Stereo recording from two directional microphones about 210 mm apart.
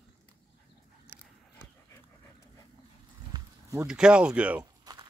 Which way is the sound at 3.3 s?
15° right (ahead or behind).